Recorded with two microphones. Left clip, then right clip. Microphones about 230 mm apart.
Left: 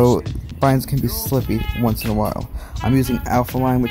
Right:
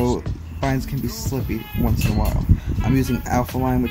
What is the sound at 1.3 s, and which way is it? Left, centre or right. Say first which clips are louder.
Speech: left 8 dB; left.